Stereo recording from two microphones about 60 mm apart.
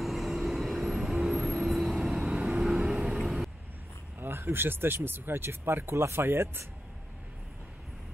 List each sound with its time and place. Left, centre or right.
0.0 s vehicle: centre
4.2 s speech: right